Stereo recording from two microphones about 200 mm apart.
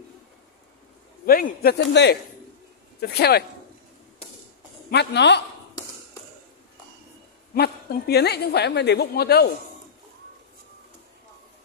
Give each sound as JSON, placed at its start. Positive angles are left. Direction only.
{"t": 1.2, "sound": "a woman's voice", "side_deg": 45}
{"t": 4.9, "sound": "a man's voice", "side_deg": 60}
{"t": 7.5, "sound": "a woman's voice", "side_deg": 55}